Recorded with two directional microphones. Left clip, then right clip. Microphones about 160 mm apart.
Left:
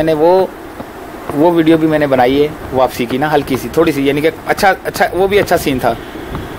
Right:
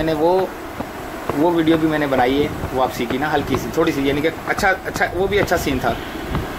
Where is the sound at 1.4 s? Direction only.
40° left (ahead or behind).